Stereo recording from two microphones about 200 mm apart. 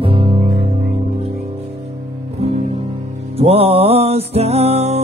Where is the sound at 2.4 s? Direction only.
30° right (ahead or behind).